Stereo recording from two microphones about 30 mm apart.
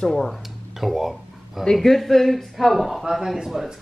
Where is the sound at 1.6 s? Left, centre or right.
Centre.